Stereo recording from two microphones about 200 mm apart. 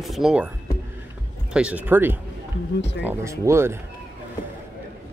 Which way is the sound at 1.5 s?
5° right (ahead or behind).